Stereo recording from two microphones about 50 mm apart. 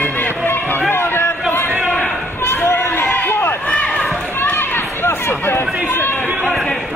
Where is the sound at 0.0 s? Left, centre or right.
Left.